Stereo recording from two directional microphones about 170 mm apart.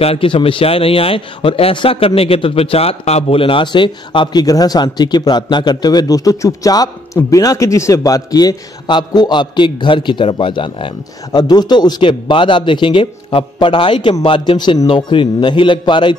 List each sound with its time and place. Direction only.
0.0 s a man's voice: 35° left (ahead or behind)